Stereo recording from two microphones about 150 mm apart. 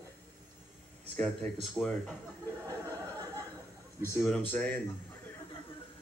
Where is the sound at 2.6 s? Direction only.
20° right (ahead or behind).